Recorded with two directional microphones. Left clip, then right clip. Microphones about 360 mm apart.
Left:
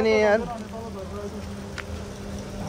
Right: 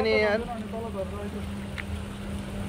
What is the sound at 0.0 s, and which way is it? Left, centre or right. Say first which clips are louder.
Speech: left 4 dB; centre.